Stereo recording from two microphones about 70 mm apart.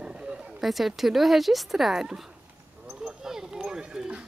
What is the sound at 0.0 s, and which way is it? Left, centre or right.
A woman's voice, centre.